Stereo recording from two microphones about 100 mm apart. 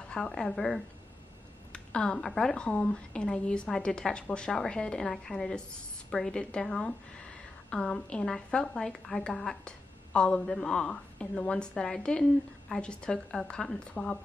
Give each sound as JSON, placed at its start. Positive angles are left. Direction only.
{"t": 0.1, "sound": "a woman's voice", "side_deg": 5}